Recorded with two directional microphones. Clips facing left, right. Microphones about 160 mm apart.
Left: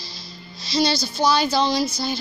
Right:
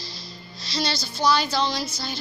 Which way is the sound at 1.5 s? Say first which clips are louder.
Left 4 dB; 15° left (ahead or behind).